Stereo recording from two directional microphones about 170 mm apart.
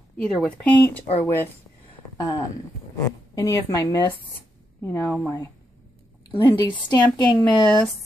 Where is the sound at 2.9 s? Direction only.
20° left (ahead or behind).